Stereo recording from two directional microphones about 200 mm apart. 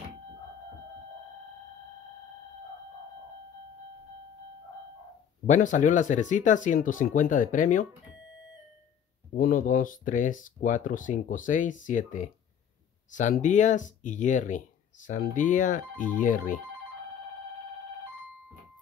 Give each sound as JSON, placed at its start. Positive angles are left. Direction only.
{"t": 5.5, "sound": "speech", "side_deg": 40}
{"t": 9.3, "sound": "speech", "side_deg": 45}